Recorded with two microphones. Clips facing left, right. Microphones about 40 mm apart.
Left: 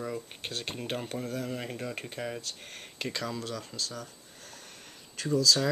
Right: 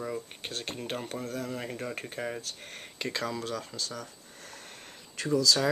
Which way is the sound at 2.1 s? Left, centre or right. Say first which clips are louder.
Right 1 dB; centre.